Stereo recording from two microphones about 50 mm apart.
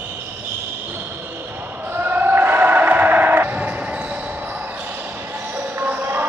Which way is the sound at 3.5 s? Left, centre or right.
Right.